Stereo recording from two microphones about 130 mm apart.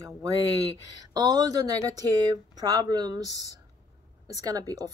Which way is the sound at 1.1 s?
30° right (ahead or behind).